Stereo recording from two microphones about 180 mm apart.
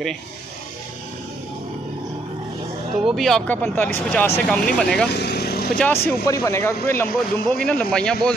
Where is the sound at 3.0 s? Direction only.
Centre (ahead or behind).